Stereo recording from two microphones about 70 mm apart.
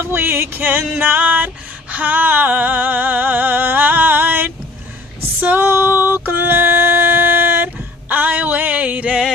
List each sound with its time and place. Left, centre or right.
0.0 s music: right
1.0 s female singing: right
5.4 s a sound: right